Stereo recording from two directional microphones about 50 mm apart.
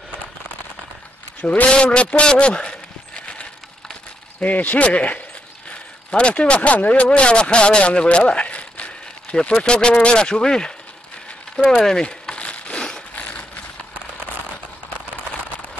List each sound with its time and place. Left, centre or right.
1.4 s a man's voice: left
4.4 s a man's voice: left; by 10.7 s centre
11.5 s crumpling: centre
13.1 s a sound: left